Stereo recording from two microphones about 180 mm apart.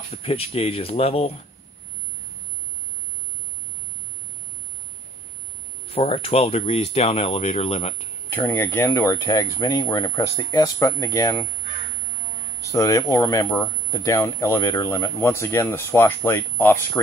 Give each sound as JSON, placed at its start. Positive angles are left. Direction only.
{"t": 0.1, "sound": "speech", "side_deg": 35}
{"t": 5.9, "sound": "speech", "side_deg": 30}
{"t": 8.3, "sound": "speech", "side_deg": 10}
{"t": 12.7, "sound": "speech", "side_deg": 15}